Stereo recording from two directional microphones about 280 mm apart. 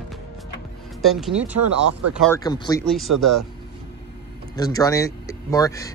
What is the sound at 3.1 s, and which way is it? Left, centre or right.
Speech, right.